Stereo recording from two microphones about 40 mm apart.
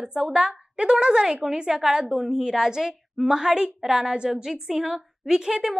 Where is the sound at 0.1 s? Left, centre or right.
Right.